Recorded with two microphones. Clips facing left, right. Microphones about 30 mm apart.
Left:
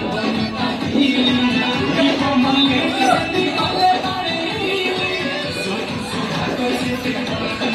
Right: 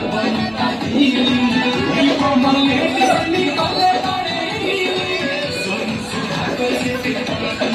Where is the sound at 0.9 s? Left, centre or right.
Right.